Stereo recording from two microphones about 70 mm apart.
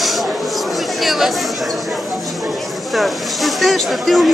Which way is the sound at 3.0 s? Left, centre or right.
Centre.